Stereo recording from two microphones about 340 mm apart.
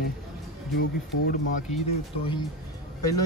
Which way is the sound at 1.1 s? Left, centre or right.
Left.